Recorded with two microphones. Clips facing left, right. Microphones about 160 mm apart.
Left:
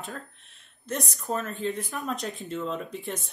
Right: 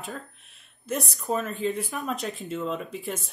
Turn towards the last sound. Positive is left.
turn(degrees=0)  # may be behind; listen again after turning